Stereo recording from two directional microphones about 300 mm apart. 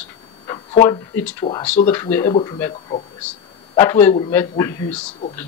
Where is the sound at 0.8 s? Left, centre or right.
Centre.